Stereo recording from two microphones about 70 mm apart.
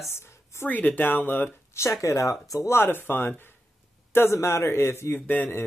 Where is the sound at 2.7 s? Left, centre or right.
Left.